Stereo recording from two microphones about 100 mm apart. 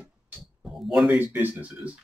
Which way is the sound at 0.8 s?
Centre (ahead or behind).